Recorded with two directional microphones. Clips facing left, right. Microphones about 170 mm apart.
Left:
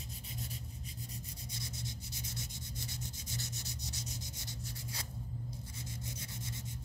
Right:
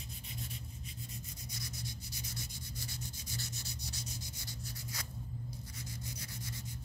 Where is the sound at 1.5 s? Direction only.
25° left (ahead or behind).